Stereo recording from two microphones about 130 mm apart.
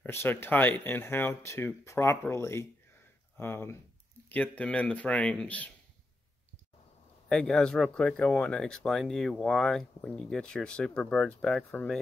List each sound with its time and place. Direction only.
0.0 s speech: 15° left (ahead or behind)
7.2 s speech: 5° left (ahead or behind)